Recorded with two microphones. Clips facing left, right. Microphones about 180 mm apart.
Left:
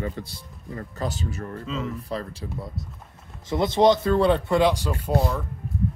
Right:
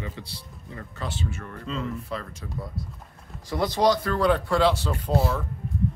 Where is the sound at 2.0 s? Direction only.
35° left (ahead or behind).